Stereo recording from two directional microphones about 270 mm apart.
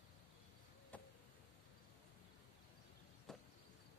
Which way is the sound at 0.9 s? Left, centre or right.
Centre.